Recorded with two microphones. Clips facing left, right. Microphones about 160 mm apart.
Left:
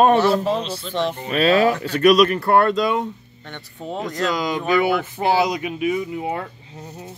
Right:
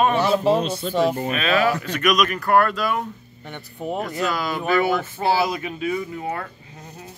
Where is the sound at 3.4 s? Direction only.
10° right (ahead or behind).